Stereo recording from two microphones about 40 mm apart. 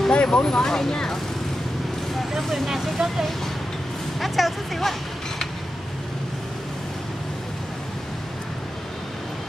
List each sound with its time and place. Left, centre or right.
0.1 s speech: left
2.1 s speech: centre